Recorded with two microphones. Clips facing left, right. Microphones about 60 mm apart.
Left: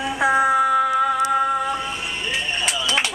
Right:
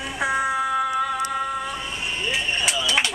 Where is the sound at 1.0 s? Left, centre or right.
Centre.